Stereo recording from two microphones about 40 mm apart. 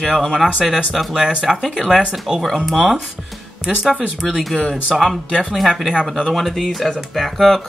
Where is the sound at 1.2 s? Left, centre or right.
Right.